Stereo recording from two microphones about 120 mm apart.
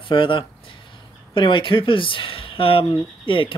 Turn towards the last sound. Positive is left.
turn(degrees=45)  # may be behind; listen again after turning